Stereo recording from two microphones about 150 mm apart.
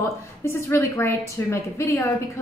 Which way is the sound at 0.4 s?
15° left (ahead or behind).